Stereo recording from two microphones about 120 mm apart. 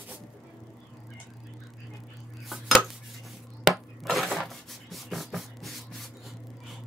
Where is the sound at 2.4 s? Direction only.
Centre (ahead or behind).